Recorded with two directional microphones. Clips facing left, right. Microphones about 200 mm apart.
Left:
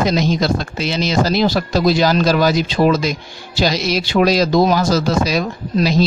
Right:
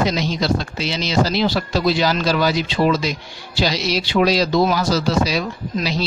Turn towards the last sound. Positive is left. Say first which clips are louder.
# left 6 dB
turn(degrees=45)  # may be behind; listen again after turning